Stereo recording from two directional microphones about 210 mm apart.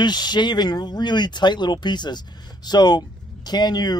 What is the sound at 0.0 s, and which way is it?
Speech, 20° left (ahead or behind).